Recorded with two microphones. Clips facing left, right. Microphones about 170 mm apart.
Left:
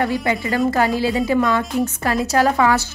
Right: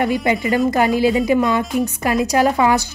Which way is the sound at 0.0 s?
20° right (ahead or behind).